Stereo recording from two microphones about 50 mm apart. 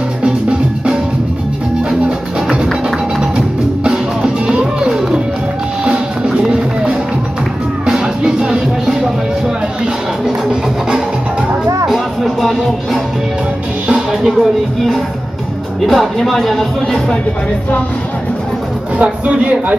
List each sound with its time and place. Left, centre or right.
0.2 s drum: centre
1.9 s music: centre
10.2 s music: centre
11.9 s music: centre
13.8 s music: centre
15.9 s speech: centre